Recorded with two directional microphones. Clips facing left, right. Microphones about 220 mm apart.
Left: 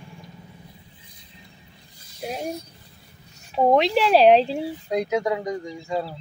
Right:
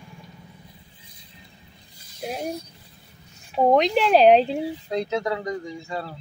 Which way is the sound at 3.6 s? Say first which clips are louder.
Even; centre (ahead or behind).